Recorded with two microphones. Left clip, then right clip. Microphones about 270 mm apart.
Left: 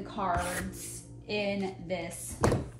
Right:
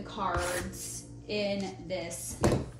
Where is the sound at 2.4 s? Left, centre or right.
Centre.